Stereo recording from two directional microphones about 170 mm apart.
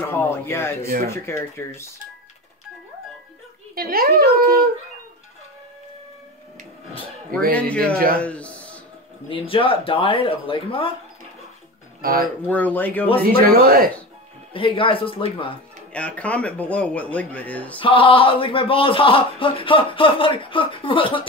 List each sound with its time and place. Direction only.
0.0 s speech: 15° left (ahead or behind)
3.7 s speech: 60° right (ahead or behind)
7.5 s a man's voice: 5° left (ahead or behind)
9.3 s speech: 30° left (ahead or behind)
12.0 s speech: 60° right (ahead or behind)
12.4 s speech: 10° left (ahead or behind)
13.2 s speech: 60° right (ahead or behind)
14.5 s speech: 30° left (ahead or behind)
15.9 s speech: 10° left (ahead or behind)
17.7 s speech: 30° left (ahead or behind)